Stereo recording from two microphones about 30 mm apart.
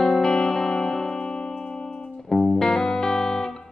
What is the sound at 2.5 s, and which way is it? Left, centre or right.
Music, centre.